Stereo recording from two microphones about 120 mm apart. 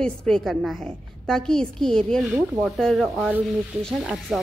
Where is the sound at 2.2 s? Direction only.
20° right (ahead or behind).